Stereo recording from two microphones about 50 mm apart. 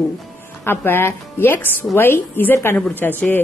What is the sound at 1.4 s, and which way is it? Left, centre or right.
A woman's voice, left.